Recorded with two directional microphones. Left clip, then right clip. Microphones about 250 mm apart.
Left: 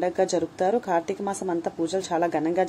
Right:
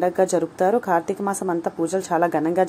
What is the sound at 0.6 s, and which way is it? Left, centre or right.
Speech, right.